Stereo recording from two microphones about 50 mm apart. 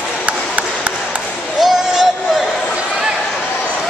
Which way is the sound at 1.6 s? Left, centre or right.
Centre.